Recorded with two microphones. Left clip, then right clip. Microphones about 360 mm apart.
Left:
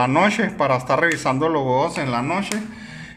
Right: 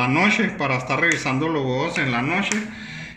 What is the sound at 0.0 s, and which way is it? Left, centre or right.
A man's voice, left.